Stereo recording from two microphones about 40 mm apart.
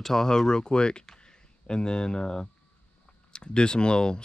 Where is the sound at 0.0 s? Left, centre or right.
Centre.